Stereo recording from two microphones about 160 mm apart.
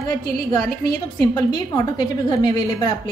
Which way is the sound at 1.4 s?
25° left (ahead or behind).